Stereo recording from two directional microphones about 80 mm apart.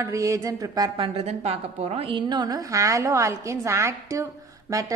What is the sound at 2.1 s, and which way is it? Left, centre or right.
A woman's voice, right.